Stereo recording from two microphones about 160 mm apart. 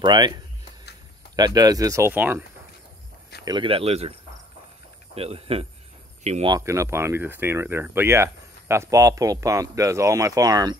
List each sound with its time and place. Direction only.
0.0 s speech: 30° right (ahead or behind)
1.3 s speech: 25° right (ahead or behind)
3.4 s speech: 30° right (ahead or behind)
6.6 s speech: 15° right (ahead or behind)